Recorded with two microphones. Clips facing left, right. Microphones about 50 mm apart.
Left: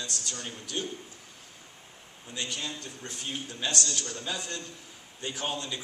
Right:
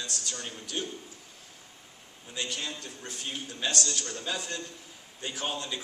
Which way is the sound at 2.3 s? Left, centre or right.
Centre.